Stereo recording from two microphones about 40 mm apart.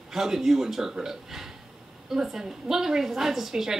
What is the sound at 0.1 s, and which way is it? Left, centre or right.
A woman's voice, centre.